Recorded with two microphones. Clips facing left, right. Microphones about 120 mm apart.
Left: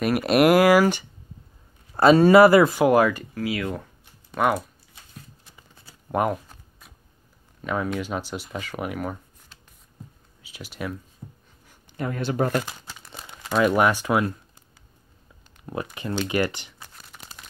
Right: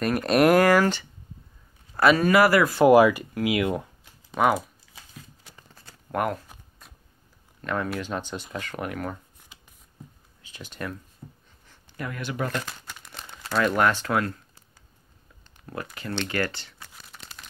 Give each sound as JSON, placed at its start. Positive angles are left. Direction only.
{"t": 0.0, "sound": "speech", "side_deg": 5}
{"t": 2.0, "sound": "speech", "side_deg": 30}
{"t": 2.8, "sound": "speech", "side_deg": -5}
{"t": 4.3, "sound": "speech", "side_deg": 0}
{"t": 6.1, "sound": "speech", "side_deg": 20}
{"t": 7.6, "sound": "speech", "side_deg": 5}
{"t": 9.5, "sound": "a sound", "side_deg": -10}
{"t": 10.4, "sound": "speech", "side_deg": 5}
{"t": 12.0, "sound": "speech", "side_deg": 30}
{"t": 12.6, "sound": "crumpling", "side_deg": 10}
{"t": 13.6, "sound": "speech", "side_deg": 15}
{"t": 15.6, "sound": "speech", "side_deg": 15}